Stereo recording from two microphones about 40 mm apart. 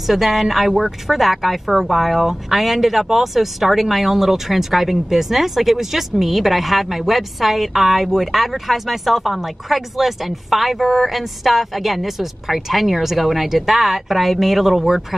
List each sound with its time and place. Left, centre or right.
0.0 s a woman's voice: centre